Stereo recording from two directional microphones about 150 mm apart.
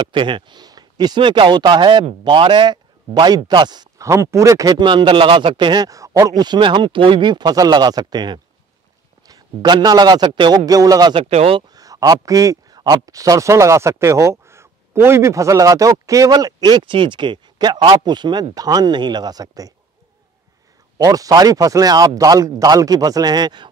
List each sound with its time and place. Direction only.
0.0 s a man's voice: 35° right (ahead or behind)
11.2 s speech: 40° right (ahead or behind)
11.7 s a man's voice: 25° right (ahead or behind)
21.0 s a man's voice: 25° right (ahead or behind)